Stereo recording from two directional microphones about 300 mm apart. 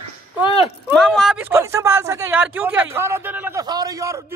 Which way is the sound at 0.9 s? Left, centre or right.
Centre.